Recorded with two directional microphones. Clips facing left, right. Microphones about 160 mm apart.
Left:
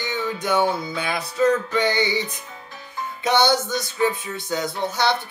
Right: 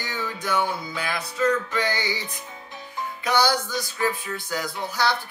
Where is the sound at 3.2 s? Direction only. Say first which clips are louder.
Left 3 dB; 25° left (ahead or behind).